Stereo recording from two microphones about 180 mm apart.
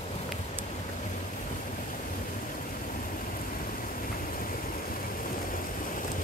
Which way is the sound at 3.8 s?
50° left (ahead or behind).